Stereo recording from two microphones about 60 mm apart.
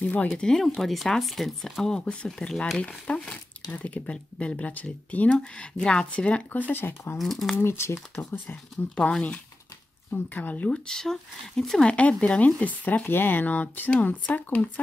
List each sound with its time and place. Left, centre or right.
0.0 s speech: left
0.3 s speech: centre
6.7 s speech: left
7.2 s speech: centre
7.5 s speech: left
9.1 s speech: centre
10.9 s speech: centre
11.9 s speech: left